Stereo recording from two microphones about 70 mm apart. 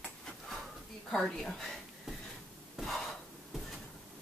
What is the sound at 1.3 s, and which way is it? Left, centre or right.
Speech, centre.